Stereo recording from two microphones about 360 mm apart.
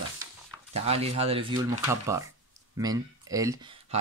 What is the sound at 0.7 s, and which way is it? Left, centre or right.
Speech, centre.